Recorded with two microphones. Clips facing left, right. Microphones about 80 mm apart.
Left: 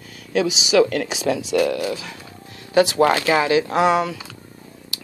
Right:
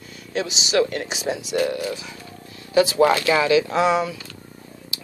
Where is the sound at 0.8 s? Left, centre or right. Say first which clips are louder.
Left 4 dB; left.